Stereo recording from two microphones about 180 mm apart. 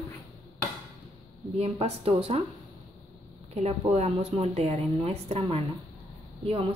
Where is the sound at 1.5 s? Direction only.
35° right (ahead or behind).